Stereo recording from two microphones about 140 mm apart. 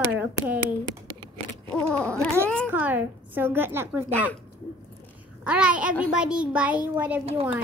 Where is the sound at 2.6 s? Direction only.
15° right (ahead or behind).